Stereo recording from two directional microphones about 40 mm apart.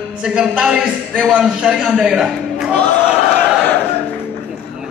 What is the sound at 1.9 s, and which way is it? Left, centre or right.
Speech, right.